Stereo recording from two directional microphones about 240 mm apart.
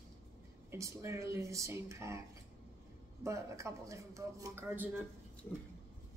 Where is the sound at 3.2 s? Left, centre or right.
Centre.